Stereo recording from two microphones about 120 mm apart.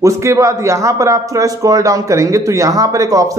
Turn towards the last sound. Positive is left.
turn(degrees=-30)  # may be behind; listen again after turning